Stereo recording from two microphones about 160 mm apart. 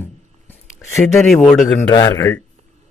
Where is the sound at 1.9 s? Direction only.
25° left (ahead or behind).